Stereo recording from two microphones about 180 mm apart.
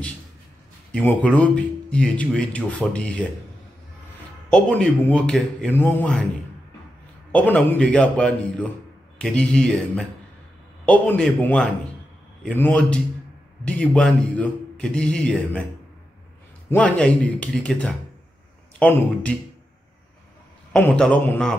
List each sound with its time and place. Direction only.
0.9 s speech: 5° left (ahead or behind)
4.5 s speech: 5° left (ahead or behind)
7.3 s speech: 10° left (ahead or behind)
16.7 s speech: 5° left (ahead or behind)
20.7 s speech: 5° left (ahead or behind)